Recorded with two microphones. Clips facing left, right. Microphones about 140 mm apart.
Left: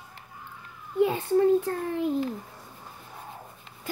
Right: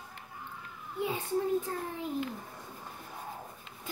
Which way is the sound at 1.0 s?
65° left (ahead or behind).